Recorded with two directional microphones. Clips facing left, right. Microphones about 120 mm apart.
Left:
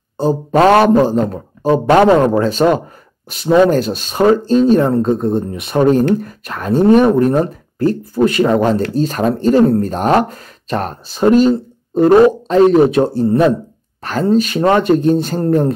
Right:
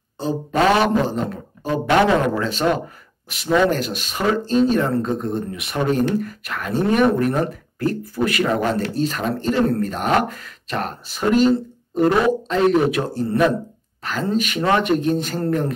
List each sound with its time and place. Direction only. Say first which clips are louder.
0.2 s speech: left 7 dB; 45° left (ahead or behind)